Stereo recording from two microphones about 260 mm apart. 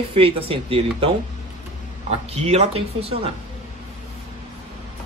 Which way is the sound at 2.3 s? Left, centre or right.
Right.